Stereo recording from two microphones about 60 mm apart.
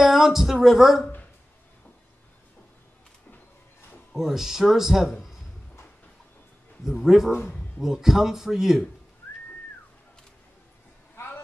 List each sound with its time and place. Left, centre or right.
0.0 s speech: centre
4.1 s speech: centre
6.8 s speech: centre
11.1 s a sound: left